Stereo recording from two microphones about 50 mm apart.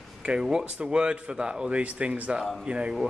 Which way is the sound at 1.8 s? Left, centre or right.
Right.